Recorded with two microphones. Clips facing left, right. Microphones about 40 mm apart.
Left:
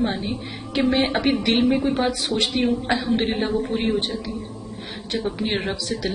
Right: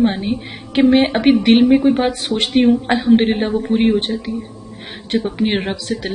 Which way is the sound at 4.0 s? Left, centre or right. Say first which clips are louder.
Right 5 dB; right.